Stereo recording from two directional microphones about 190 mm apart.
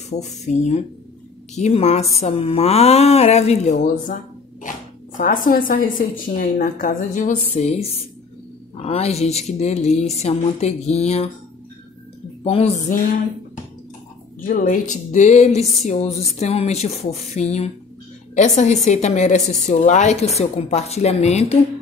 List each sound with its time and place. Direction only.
0.1 s a woman's voice: 35° left (ahead or behind)
12.4 s a woman's voice: 30° left (ahead or behind)
14.4 s a woman's voice: 45° left (ahead or behind)
15.6 s a sound: centre (ahead or behind)
15.9 s a woman's voice: 35° left (ahead or behind)